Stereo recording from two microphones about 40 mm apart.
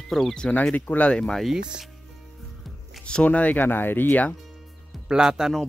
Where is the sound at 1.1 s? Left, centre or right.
Left.